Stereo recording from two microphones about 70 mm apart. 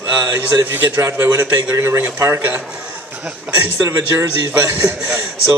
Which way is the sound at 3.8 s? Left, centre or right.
Right.